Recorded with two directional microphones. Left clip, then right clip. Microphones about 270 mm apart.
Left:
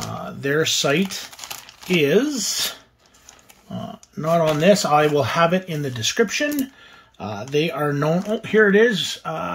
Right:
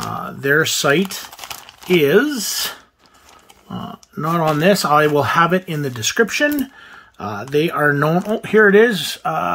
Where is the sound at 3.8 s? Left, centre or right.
Centre.